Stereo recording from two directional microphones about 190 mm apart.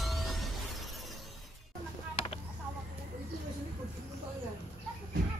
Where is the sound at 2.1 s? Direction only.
30° left (ahead or behind).